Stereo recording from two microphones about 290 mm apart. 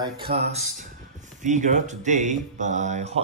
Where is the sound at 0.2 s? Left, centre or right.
Right.